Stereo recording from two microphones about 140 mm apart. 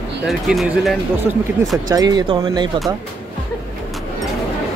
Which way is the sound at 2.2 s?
40° right (ahead or behind).